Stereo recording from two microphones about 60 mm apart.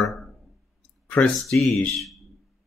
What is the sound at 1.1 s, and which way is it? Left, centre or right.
Speech, left.